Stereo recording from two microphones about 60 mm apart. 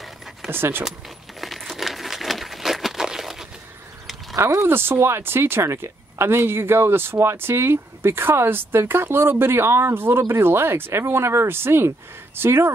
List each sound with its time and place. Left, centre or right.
0.5 s speech: right
1.4 s coin: centre
4.6 s speech: right